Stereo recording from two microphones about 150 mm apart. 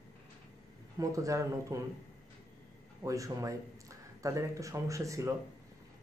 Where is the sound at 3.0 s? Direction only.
20° right (ahead or behind).